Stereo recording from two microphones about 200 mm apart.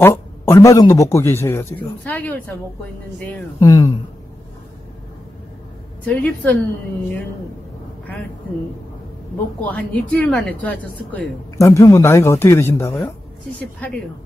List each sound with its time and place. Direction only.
0.0 s speech: 15° left (ahead or behind)
6.0 s speech: 10° left (ahead or behind)
9.7 s speech: 5° left (ahead or behind)